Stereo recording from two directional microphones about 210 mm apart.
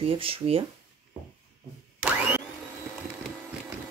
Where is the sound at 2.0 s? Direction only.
5° right (ahead or behind).